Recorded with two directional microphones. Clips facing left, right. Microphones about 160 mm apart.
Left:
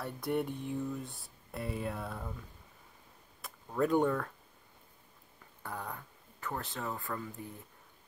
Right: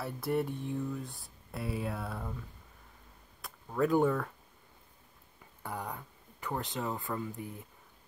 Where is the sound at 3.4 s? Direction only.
Centre (ahead or behind).